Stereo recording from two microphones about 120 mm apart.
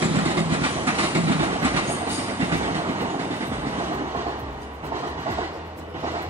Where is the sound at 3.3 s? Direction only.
20° right (ahead or behind).